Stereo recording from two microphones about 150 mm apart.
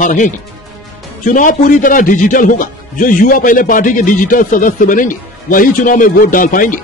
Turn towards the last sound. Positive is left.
turn(degrees=65)  # may be behind; listen again after turning